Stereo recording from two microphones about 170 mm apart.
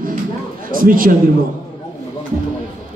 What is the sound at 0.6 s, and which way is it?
Speech, 55° right (ahead or behind).